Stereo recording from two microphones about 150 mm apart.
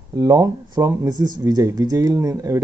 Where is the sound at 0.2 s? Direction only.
25° right (ahead or behind).